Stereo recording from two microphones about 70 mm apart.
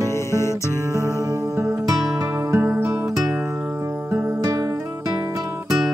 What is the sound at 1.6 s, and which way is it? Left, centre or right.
Music, right.